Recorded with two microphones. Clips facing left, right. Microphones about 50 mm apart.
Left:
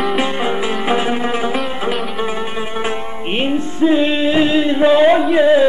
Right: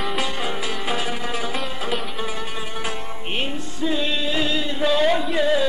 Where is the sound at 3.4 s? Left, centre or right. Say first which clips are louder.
Left 15 dB; left.